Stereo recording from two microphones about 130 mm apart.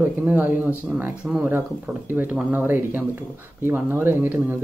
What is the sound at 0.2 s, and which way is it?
Speech, 10° right (ahead or behind).